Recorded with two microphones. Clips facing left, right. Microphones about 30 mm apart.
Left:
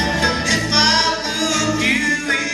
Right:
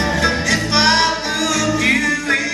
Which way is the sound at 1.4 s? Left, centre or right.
Left.